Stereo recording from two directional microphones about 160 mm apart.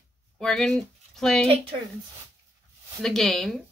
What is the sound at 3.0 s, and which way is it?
Speech, centre (ahead or behind).